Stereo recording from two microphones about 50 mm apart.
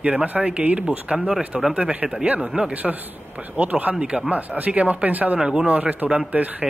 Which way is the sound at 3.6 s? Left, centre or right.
Right.